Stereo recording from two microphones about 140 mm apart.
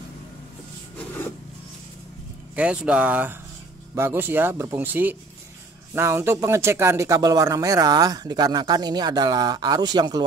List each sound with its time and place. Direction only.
2.5 s speech: 10° right (ahead or behind); by 10.2 s 30° right (ahead or behind)